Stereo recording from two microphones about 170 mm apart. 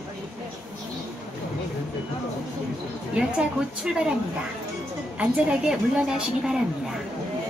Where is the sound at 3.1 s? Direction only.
5° right (ahead or behind).